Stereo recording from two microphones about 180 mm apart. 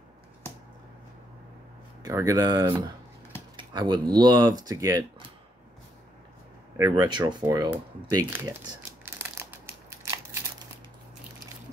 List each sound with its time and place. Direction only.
2.0 s speech: 20° right (ahead or behind)
6.8 s speech: 20° right (ahead or behind)
8.6 s crumpling: 15° right (ahead or behind)